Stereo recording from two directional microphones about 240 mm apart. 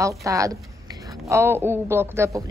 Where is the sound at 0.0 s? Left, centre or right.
Centre.